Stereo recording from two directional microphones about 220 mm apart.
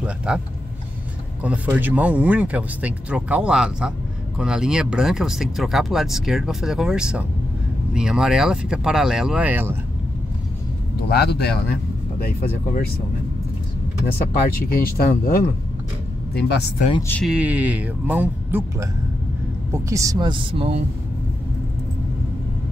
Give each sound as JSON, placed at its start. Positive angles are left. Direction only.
{"t": 0.0, "sound": "vehicle", "side_deg": -5}
{"t": 1.4, "sound": "speech", "side_deg": -5}
{"t": 11.1, "sound": "speech", "side_deg": 45}
{"t": 14.7, "sound": "speech", "side_deg": 40}
{"t": 17.1, "sound": "speech", "side_deg": 0}